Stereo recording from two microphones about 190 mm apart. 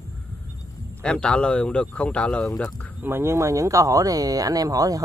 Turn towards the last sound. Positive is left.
turn(degrees=-20)  # may be behind; listen again after turning